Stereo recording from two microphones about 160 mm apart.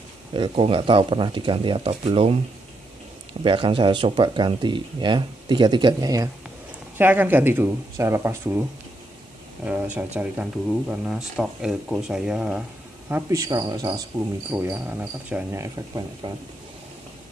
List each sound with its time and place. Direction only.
0.3 s speech: 35° right (ahead or behind)
3.4 s speech: 30° right (ahead or behind)
7.0 s speech: 10° right (ahead or behind)
10.1 s speech: 5° right (ahead or behind)
13.1 s speech: 20° right (ahead or behind)
14.5 s speech: 10° right (ahead or behind)